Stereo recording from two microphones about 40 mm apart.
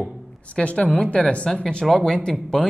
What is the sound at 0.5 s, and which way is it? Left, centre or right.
Speech, left.